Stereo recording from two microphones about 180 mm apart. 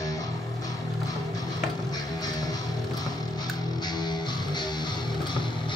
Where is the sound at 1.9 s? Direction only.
20° left (ahead or behind).